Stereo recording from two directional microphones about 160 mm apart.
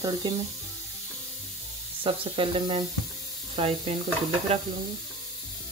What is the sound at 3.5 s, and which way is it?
Sizzle, 35° right (ahead or behind).